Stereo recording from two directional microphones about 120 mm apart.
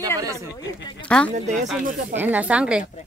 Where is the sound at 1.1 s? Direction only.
10° left (ahead or behind).